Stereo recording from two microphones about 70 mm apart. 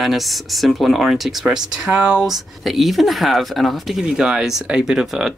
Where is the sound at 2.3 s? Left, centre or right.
Centre.